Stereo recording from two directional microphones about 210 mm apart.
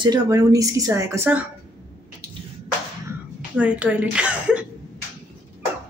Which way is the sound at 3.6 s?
5° right (ahead or behind).